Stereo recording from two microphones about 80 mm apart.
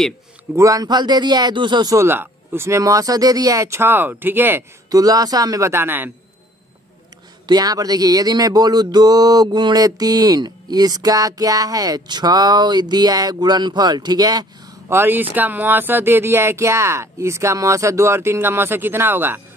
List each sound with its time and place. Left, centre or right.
0.6 s a sound: right
2.0 s speech: right
4.9 s speech: right
5.7 s a man's voice: right
7.4 s a sound: right
14.9 s speech: right